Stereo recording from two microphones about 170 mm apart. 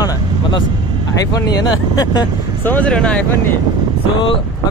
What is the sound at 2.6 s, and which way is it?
Speech, 10° left (ahead or behind).